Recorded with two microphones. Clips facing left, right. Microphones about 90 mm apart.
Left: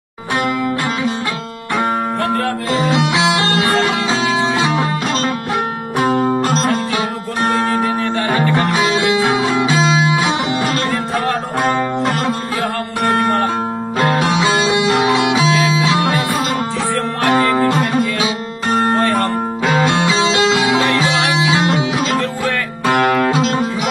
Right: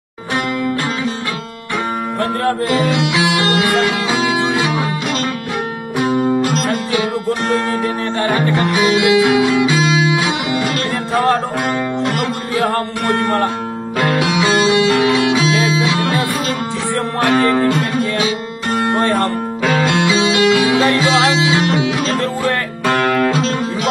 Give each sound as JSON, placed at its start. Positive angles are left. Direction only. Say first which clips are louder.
{"t": 2.8, "sound": "music", "louder": "left 1 dB", "side_deg": 20}
{"t": 5.9, "sound": "music", "louder": "even", "side_deg": 35}
{"t": 8.4, "sound": "music", "louder": "left 1 dB", "side_deg": 30}
{"t": 13.9, "sound": "music", "louder": "even", "side_deg": 25}
{"t": 17.3, "sound": "music", "louder": "even", "side_deg": 30}
{"t": 22.9, "sound": "music", "louder": "left 1 dB", "side_deg": 15}